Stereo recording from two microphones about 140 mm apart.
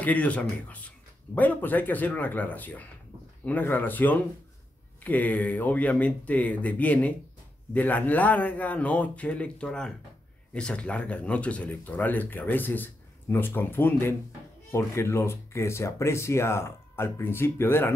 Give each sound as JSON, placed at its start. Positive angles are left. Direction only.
{"t": 0.0, "sound": "speech", "side_deg": 10}